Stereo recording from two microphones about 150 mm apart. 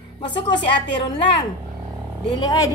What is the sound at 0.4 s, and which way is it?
Speech, 30° left (ahead or behind).